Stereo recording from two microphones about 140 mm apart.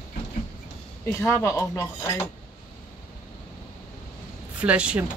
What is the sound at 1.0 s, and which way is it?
Speech, 20° left (ahead or behind).